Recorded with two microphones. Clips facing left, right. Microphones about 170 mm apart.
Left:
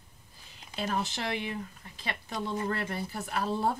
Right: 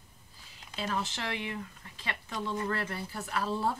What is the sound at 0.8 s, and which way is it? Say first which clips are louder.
A woman's voice: left 2 dB; 40° left (ahead or behind).